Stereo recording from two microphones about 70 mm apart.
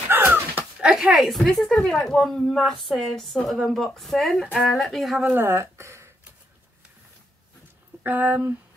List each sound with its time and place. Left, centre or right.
0.1 s a sound: right
0.8 s a woman's voice: centre
5.3 s speech: right
8.0 s speech: right